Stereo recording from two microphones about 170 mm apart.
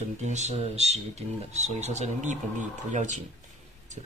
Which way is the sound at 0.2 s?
40° right (ahead or behind).